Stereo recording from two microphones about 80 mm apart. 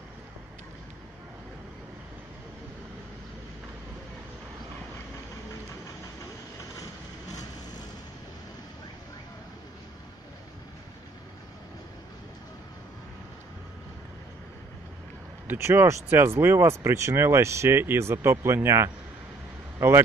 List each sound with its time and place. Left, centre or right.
15.4 s speech: right